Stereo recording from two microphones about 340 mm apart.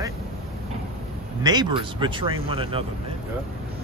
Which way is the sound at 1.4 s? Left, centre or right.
Centre.